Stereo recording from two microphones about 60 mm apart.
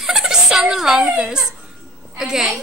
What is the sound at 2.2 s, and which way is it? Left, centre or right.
Speech, centre.